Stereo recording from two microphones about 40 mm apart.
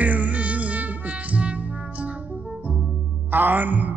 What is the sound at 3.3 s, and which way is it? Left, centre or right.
Music, right.